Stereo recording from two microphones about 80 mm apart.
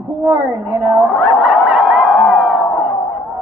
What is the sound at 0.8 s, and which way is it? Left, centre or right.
Speech, centre.